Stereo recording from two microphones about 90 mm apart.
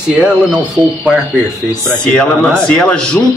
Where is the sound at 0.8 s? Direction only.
25° left (ahead or behind).